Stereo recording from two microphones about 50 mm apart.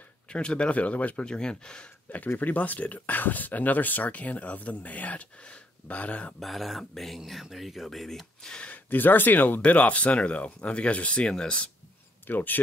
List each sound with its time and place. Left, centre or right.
0.3 s speech: centre
1.2 s speech: centre
2.0 s speech: left
6.4 s speech: centre
8.5 s speech: left
8.9 s speech: left; by 11.7 s centre
12.3 s speech: left